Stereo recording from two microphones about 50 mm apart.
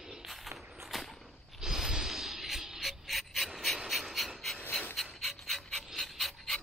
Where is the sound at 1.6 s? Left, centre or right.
Centre.